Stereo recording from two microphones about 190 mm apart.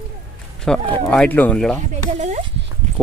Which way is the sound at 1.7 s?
40° right (ahead or behind).